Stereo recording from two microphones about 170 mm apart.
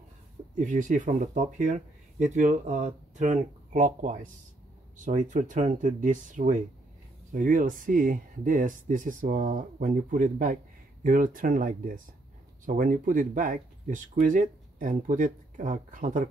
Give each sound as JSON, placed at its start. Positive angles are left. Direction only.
{"t": 0.6, "sound": "speech", "side_deg": -50}